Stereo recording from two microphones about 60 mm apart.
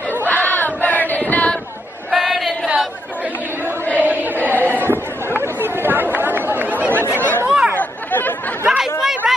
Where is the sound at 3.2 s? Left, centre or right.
Right.